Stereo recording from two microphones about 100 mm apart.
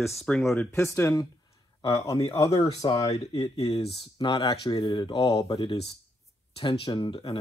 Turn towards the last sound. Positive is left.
turn(degrees=55)  # may be behind; listen again after turning